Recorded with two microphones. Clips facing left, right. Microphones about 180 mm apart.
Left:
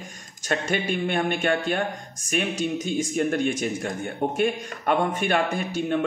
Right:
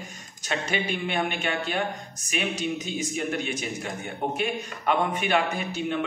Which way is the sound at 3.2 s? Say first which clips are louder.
Left 7 dB; 50° left (ahead or behind).